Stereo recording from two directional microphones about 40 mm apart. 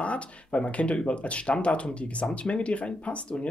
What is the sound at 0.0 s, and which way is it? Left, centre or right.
Speech, left.